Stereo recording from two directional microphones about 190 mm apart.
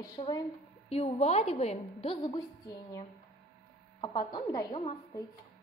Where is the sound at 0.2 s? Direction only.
25° left (ahead or behind).